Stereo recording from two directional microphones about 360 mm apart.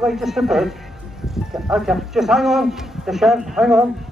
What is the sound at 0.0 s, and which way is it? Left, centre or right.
A man's voice, centre.